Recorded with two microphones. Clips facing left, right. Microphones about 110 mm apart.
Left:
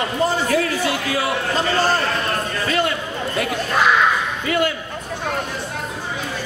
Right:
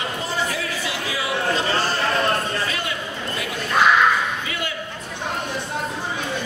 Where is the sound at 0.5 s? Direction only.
55° left (ahead or behind).